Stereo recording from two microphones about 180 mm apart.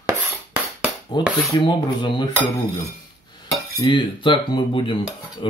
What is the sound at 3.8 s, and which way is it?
Cutlery, 25° left (ahead or behind).